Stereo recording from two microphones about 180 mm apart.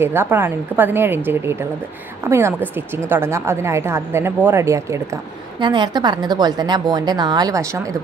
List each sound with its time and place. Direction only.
0.0 s a woman's voice: 10° right (ahead or behind)